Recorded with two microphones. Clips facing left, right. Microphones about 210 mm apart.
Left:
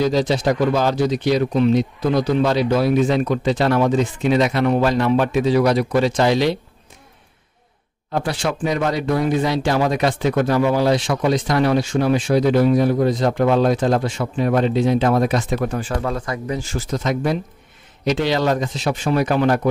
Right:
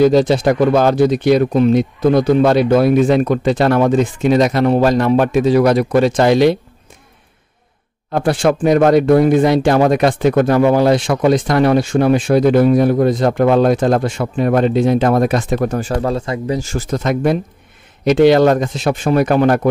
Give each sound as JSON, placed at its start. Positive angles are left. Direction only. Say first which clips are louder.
{"t": 0.0, "sound": "speech", "louder": "right 7 dB", "side_deg": -55}
{"t": 8.1, "sound": "speech", "louder": "right 8 dB", "side_deg": -50}
{"t": 16.5, "sound": "speech", "louder": "right 4 dB", "side_deg": -50}